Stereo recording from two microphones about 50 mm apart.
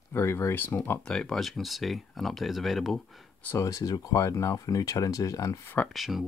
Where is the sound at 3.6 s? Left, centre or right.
Left.